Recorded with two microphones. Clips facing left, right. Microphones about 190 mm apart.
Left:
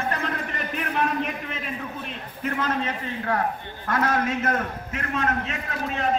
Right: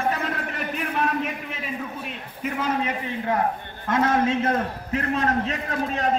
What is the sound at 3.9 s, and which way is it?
A man's voice, 25° right (ahead or behind).